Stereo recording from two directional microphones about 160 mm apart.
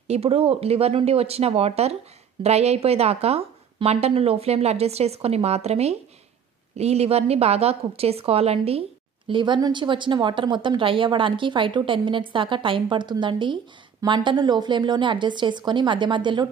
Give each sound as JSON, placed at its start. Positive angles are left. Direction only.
{"t": 0.1, "sound": "a woman's voice", "side_deg": -40}